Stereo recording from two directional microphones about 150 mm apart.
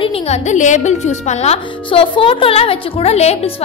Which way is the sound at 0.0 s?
40° left (ahead or behind).